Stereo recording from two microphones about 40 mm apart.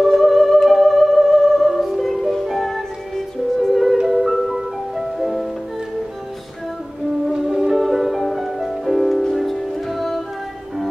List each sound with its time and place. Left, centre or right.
0.0 s music: centre
7.3 s music: centre